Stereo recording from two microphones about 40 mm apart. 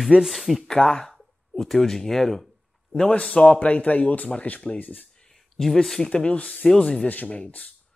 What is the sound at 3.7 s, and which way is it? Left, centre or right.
Speech, left.